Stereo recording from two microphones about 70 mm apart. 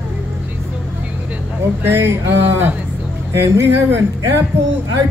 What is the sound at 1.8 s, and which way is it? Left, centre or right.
Speech, right.